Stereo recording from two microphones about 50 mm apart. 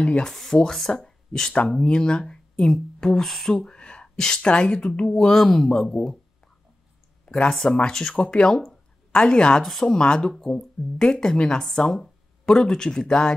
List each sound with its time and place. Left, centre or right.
0.0 s a woman's voice: left
0.3 s speech: centre
3.2 s speech: centre
7.2 s a woman's voice: centre
9.7 s speech: centre